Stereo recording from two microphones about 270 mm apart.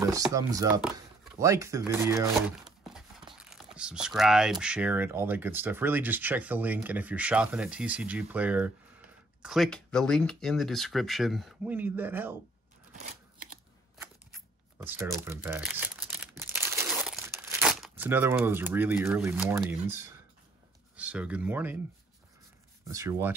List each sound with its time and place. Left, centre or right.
0.0 s speech: centre
12.9 s a sound: right
14.8 s crumpling: centre
20.9 s speech: centre
22.8 s speech: centre